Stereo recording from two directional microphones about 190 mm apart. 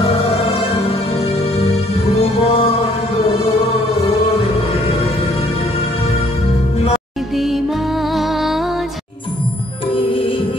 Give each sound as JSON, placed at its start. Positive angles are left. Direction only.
{"t": 0.0, "sound": "music", "side_deg": 30}
{"t": 4.0, "sound": "music", "side_deg": 30}
{"t": 7.3, "sound": "music", "side_deg": 0}